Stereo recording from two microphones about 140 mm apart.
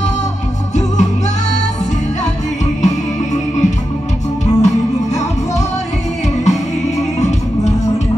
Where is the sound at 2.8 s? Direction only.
55° left (ahead or behind).